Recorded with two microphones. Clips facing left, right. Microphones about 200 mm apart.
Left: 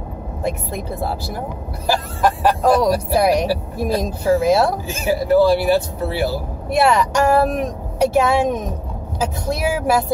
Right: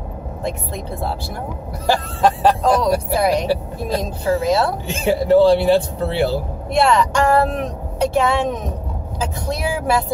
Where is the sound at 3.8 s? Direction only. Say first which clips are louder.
Left 2 dB; 10° left (ahead or behind).